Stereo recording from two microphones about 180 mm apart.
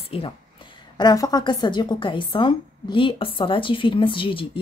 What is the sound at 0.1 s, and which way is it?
A woman's voice, 30° left (ahead or behind).